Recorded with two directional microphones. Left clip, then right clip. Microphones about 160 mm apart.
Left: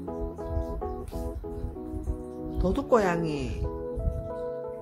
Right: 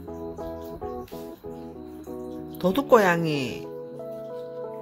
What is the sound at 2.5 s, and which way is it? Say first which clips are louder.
Speech: right 5 dB; 15° right (ahead or behind).